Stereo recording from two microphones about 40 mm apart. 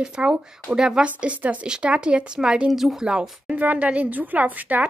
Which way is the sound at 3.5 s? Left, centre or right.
Right.